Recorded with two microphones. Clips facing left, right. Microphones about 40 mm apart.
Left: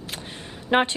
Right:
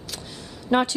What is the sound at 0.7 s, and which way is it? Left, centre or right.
Speech, left.